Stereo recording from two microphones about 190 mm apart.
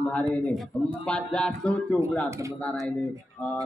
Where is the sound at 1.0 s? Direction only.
5° left (ahead or behind).